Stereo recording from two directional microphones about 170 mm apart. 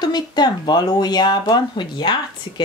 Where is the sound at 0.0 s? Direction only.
25° left (ahead or behind).